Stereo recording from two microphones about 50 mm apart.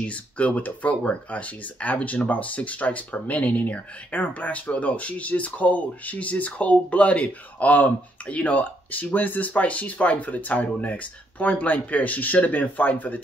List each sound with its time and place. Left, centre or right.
0.0 s speech: left